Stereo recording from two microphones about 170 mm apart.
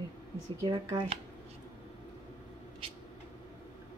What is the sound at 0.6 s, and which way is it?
Speech, 20° right (ahead or behind).